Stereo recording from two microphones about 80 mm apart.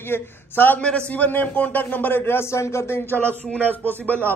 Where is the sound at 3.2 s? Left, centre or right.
Centre.